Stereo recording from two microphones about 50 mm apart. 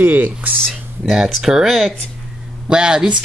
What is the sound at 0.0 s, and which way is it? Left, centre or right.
Speech, right.